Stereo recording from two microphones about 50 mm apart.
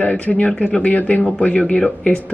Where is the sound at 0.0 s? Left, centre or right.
Left.